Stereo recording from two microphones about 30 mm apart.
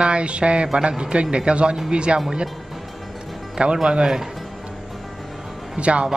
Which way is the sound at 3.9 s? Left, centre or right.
Right.